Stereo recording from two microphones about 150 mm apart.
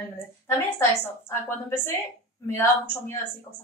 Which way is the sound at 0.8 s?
15° left (ahead or behind).